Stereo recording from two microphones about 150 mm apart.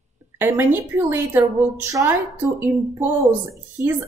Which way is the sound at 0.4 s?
15° right (ahead or behind).